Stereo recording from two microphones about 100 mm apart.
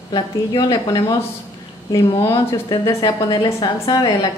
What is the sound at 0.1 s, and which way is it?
Speech, 55° left (ahead or behind).